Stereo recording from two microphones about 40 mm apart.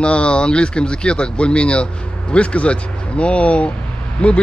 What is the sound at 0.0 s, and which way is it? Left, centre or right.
Speech, left.